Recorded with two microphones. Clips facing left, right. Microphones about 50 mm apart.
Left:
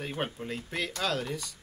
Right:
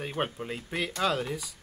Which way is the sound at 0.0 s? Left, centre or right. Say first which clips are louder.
Right 2 dB; centre.